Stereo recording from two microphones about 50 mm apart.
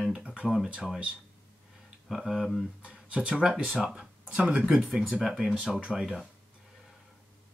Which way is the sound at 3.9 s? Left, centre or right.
Right.